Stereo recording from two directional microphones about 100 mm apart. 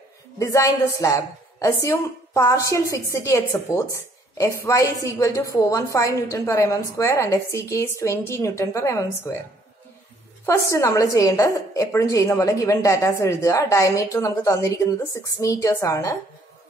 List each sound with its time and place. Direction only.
0.4 s a woman's voice: 30° left (ahead or behind)
10.4 s a woman's voice: 30° left (ahead or behind)